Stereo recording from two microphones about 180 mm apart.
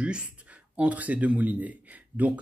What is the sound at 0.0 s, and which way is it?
Speech, 5° right (ahead or behind).